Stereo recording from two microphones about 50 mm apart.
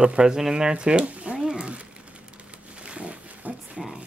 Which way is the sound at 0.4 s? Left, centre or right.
Centre.